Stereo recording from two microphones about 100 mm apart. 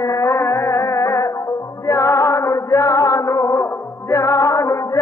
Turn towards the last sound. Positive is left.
turn(degrees=30)  # may be behind; listen again after turning